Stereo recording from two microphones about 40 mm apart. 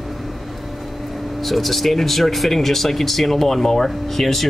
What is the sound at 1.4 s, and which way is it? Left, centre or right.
Speech, centre.